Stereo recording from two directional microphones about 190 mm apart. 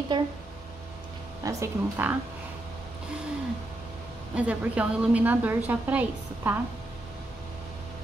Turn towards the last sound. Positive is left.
turn(degrees=-10)  # may be behind; listen again after turning